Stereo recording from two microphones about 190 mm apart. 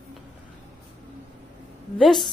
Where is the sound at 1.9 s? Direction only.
Centre (ahead or behind).